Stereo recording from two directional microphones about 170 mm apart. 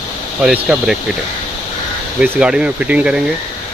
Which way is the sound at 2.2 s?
10° right (ahead or behind).